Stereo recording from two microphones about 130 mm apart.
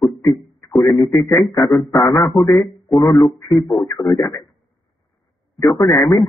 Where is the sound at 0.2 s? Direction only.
25° left (ahead or behind).